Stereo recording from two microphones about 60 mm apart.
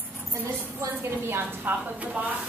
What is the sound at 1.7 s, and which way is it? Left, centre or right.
Speech, right.